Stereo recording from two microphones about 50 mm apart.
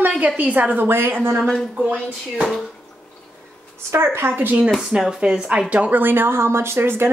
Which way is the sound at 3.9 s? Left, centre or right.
Right.